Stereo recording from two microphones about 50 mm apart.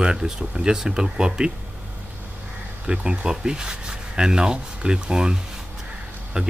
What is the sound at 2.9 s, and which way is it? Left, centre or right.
Speech, centre.